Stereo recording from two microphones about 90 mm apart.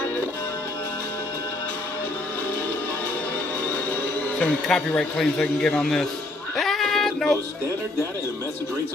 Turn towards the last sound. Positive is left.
turn(degrees=5)  # may be behind; listen again after turning